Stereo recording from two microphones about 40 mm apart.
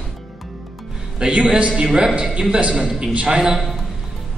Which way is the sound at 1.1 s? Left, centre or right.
Right.